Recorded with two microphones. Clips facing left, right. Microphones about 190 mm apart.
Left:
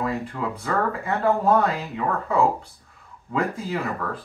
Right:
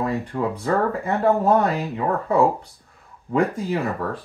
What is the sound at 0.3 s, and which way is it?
Speech, 25° right (ahead or behind).